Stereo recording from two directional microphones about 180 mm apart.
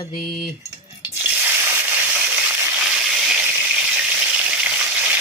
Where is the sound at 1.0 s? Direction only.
10° right (ahead or behind).